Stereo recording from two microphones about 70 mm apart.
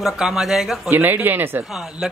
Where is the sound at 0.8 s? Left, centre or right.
Right.